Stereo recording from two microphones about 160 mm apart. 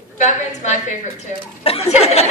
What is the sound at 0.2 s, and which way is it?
Speech, 45° left (ahead or behind).